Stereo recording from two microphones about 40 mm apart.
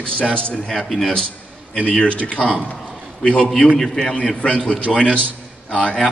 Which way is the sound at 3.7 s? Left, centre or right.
Centre.